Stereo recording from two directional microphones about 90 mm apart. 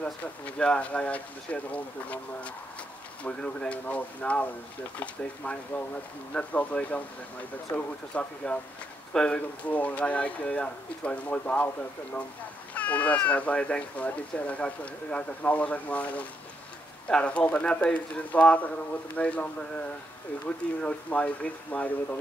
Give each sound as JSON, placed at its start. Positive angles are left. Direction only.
{"t": 0.0, "sound": "speech", "side_deg": 10}